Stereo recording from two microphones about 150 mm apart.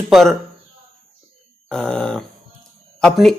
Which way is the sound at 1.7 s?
5° left (ahead or behind).